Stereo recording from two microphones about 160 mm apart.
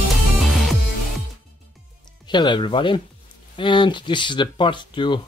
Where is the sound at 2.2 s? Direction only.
30° left (ahead or behind).